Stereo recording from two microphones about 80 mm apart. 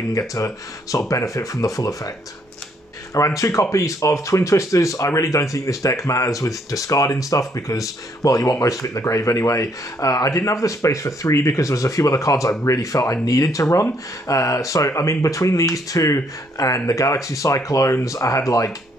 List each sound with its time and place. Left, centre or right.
0.1 s speech: left
3.2 s speech: left